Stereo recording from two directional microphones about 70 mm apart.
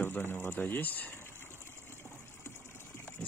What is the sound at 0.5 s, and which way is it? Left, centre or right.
Speech, left.